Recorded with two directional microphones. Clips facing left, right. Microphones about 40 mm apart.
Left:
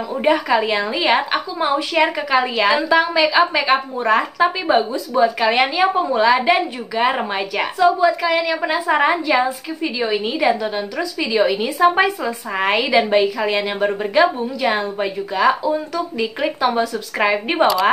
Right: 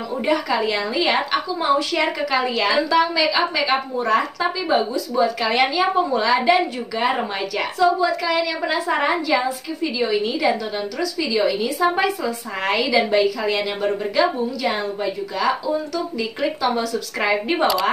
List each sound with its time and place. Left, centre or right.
0.2 s a woman's voice: left